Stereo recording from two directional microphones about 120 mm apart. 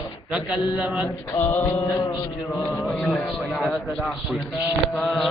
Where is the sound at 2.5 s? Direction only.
Centre (ahead or behind).